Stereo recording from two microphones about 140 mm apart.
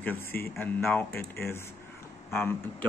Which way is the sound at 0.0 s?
15° left (ahead or behind).